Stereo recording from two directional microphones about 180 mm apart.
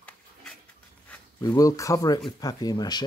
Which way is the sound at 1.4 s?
20° left (ahead or behind).